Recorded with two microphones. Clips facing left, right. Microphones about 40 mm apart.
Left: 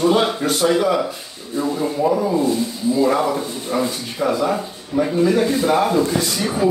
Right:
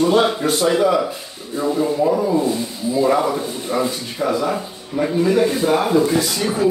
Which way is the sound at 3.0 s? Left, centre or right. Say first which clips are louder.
Right 2 dB; centre.